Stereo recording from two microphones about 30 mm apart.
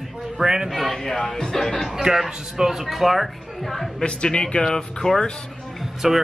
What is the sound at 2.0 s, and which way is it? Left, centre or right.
Speech, centre.